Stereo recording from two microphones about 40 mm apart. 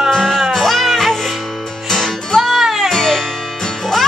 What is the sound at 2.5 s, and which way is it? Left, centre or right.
Music, centre.